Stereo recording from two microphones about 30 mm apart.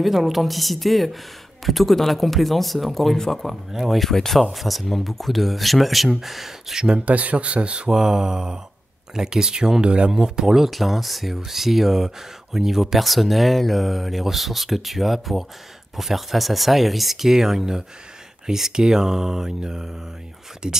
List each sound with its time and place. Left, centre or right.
0.0 s speech: centre
3.2 s speech: centre
3.7 s speech: centre
4.0 s speech: centre
4.4 s speech: centre
7.1 s speech: right
7.9 s speech: centre
9.8 s speech: right
10.1 s speech: right
10.7 s speech: centre; by 20.8 s right